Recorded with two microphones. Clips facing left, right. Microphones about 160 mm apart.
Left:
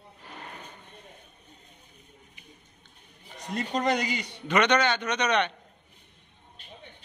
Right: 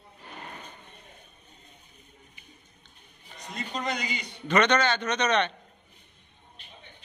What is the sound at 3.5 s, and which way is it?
Speech, 60° left (ahead or behind).